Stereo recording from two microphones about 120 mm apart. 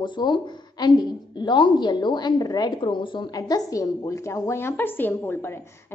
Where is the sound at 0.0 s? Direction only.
40° left (ahead or behind).